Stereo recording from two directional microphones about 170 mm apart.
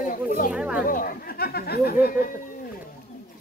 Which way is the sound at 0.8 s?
55° left (ahead or behind).